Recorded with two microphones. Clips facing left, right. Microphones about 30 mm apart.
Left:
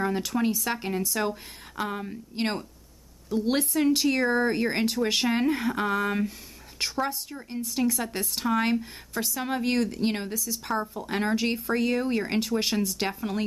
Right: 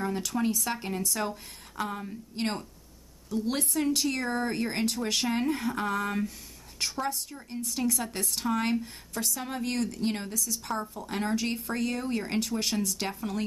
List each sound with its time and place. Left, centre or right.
0.0 s speech: left